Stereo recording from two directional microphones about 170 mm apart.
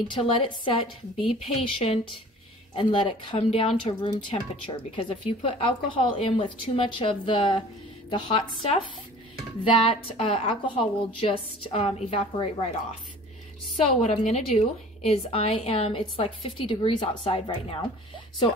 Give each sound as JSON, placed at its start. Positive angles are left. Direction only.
{"t": 0.1, "sound": "speech", "side_deg": 30}
{"t": 9.8, "sound": "speech", "side_deg": 35}
{"t": 13.7, "sound": "speech", "side_deg": 40}